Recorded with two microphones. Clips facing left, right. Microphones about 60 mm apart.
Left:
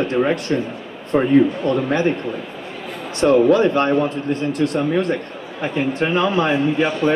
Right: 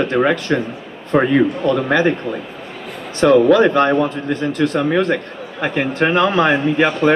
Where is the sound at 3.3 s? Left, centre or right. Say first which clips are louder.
Right 3 dB; right.